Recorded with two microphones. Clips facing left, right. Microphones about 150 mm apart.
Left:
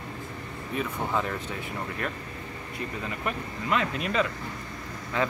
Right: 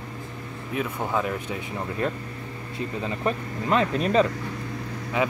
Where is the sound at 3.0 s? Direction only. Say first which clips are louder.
Right 7 dB; 35° right (ahead or behind).